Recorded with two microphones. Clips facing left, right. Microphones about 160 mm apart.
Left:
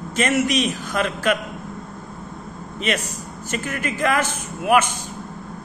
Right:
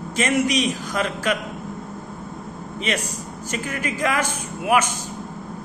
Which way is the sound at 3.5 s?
55° left (ahead or behind).